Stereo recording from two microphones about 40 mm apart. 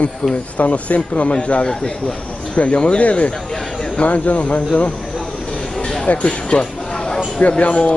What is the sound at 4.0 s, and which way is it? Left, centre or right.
Speech, left.